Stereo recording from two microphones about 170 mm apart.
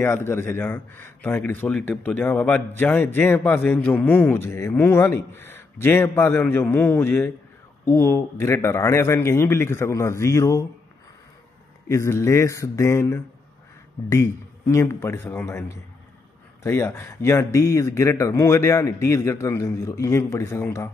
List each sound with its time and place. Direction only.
0.0 s a man's voice: 15° left (ahead or behind)
11.9 s a man's voice: 15° left (ahead or behind)